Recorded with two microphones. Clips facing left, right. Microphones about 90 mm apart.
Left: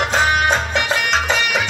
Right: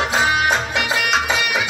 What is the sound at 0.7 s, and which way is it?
Music, 5° right (ahead or behind).